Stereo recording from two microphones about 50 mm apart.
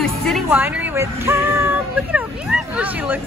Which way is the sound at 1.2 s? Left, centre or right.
Right.